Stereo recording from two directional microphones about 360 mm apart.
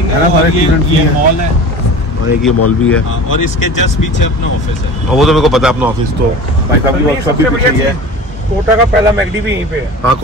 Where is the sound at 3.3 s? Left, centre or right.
Left.